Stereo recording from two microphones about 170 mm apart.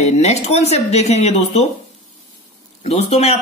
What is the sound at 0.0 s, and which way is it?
Speech, 40° left (ahead or behind).